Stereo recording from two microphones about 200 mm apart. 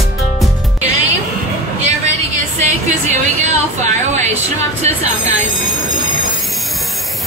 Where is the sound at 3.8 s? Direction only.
35° right (ahead or behind).